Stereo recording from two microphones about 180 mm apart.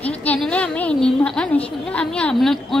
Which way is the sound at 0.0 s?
10° left (ahead or behind).